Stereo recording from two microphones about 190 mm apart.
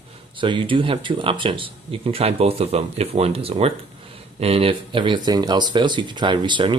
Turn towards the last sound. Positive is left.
turn(degrees=-25)  # may be behind; listen again after turning